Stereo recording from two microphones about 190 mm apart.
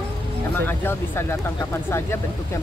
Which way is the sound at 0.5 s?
10° left (ahead or behind).